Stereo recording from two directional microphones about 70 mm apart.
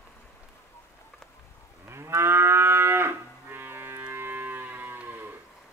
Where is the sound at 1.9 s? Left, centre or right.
Right.